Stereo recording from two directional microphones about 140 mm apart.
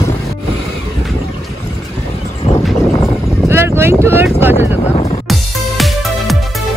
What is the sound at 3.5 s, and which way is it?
Speech, 15° right (ahead or behind).